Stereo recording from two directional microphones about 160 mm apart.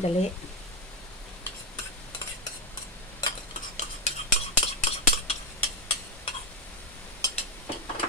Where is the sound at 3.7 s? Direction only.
45° left (ahead or behind).